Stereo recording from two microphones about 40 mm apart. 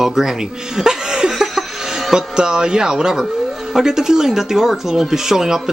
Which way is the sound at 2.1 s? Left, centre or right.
Centre.